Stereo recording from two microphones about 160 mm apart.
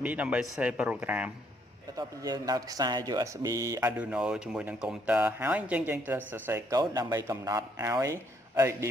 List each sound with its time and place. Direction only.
0.0 s speech: 10° right (ahead or behind)
2.0 s speech: 25° right (ahead or behind)
4.0 s speech: 5° right (ahead or behind)